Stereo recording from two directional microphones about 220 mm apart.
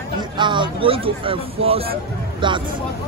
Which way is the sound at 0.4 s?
20° right (ahead or behind).